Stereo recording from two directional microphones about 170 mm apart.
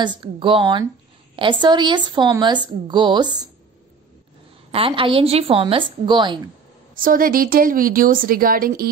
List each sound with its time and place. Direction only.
0.0 s speech: 25° right (ahead or behind)
4.6 s a woman's voice: 30° right (ahead or behind)
7.0 s speech: 55° right (ahead or behind)